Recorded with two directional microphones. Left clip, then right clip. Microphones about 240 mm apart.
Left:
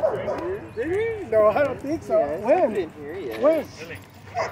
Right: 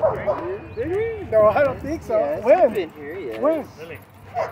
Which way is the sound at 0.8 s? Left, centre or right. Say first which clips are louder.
Right 1 dB; centre.